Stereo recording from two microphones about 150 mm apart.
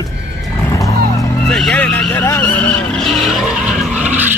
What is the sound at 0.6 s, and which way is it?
Music, 20° left (ahead or behind).